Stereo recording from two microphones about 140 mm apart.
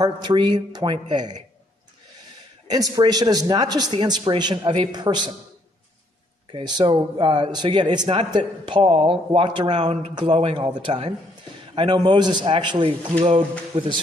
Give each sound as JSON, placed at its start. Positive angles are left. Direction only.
{"t": 0.0, "sound": "speech", "side_deg": -30}
{"t": 2.7, "sound": "speech", "side_deg": -30}
{"t": 6.5, "sound": "speech", "side_deg": -30}